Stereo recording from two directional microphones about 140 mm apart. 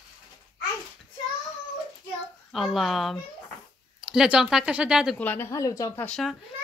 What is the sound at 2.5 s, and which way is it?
A woman's voice, centre (ahead or behind).